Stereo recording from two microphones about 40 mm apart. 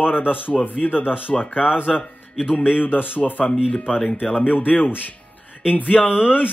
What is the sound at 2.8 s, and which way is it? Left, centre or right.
Speech, left.